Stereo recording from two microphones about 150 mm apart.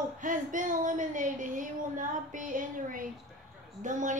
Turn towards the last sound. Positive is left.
turn(degrees=-55)  # may be behind; listen again after turning